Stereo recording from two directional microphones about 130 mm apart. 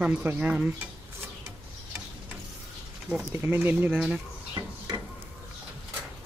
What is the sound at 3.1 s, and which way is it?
Speech, 10° right (ahead or behind).